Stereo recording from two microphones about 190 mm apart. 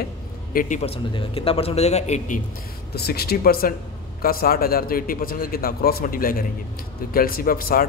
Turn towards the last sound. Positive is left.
turn(degrees=50)  # may be behind; listen again after turning